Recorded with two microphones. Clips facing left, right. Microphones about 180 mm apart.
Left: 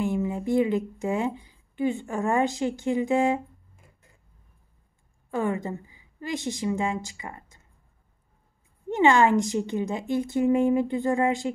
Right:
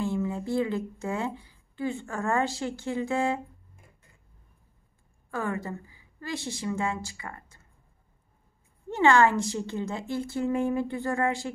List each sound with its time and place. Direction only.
0.0 s a woman's voice: 20° left (ahead or behind)
5.3 s a woman's voice: 20° left (ahead or behind)
8.8 s a woman's voice: 20° left (ahead or behind)